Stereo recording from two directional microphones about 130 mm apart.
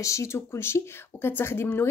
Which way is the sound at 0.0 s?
25° left (ahead or behind).